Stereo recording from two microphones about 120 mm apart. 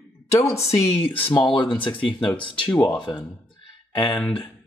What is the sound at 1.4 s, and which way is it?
Speech, 40° left (ahead or behind).